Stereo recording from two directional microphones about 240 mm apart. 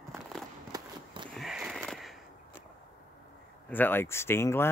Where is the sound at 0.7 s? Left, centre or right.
Centre.